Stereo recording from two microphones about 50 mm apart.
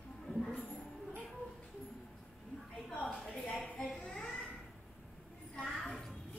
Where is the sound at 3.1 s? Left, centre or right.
Centre.